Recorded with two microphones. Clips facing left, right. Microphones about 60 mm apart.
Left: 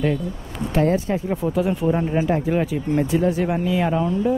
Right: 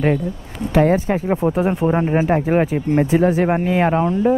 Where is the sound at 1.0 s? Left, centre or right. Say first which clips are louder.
Right 5 dB; right.